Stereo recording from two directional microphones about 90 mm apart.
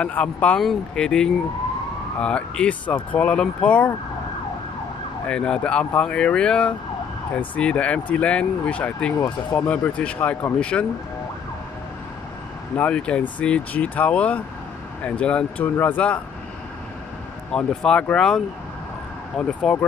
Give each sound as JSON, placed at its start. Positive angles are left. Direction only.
{"t": 0.0, "sound": "speech", "side_deg": 15}
{"t": 5.2, "sound": "speech", "side_deg": 10}
{"t": 12.7, "sound": "speech", "side_deg": 15}
{"t": 17.5, "sound": "speech", "side_deg": 10}